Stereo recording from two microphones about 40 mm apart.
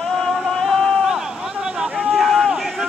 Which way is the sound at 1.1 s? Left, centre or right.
Centre.